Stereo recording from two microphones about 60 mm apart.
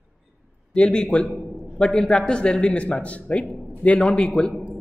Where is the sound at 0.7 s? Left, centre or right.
Centre.